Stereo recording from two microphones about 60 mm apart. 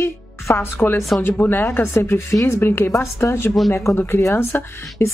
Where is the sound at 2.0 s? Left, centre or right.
Left.